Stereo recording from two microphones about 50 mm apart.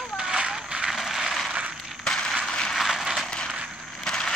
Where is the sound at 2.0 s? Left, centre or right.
Centre.